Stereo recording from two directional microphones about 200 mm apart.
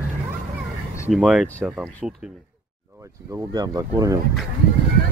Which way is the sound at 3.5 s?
20° right (ahead or behind).